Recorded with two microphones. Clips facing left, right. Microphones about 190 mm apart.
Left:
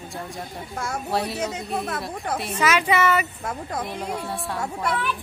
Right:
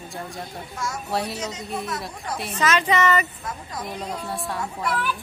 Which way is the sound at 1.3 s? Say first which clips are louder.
Left 3 dB; 55° left (ahead or behind).